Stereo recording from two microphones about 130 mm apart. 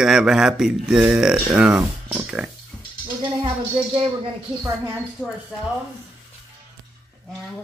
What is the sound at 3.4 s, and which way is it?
Speech, 40° right (ahead or behind).